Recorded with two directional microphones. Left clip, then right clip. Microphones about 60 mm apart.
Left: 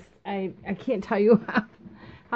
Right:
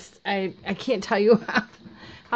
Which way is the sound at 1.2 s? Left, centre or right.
Left.